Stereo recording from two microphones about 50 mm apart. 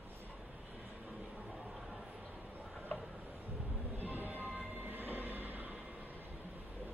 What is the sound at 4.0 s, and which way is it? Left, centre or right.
Train, right.